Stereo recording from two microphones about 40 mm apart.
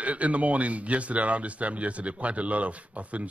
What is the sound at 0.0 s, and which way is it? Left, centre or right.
Speech, right.